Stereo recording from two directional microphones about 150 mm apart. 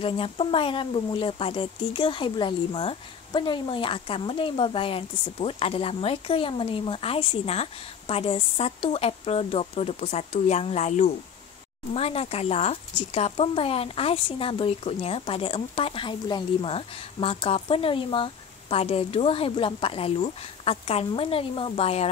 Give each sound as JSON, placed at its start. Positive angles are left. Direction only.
{"t": 0.0, "sound": "speech", "side_deg": 35}